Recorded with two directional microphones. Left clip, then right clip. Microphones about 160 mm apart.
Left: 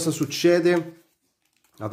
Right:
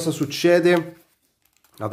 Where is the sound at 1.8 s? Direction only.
10° right (ahead or behind).